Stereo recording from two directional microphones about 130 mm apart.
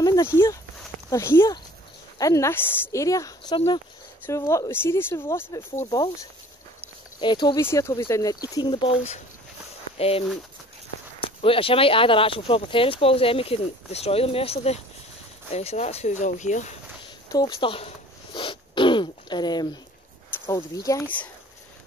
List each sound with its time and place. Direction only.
0.0 s a sound: 30° left (ahead or behind)
1.1 s speech: 20° left (ahead or behind)
5.9 s speech: 30° left (ahead or behind)
7.6 s speech: 20° left (ahead or behind)
9.9 s speech: 50° left (ahead or behind); by 16.7 s 65° left (ahead or behind)
17.6 s zipper: 45° left (ahead or behind)
20.4 s speech: 30° left (ahead or behind)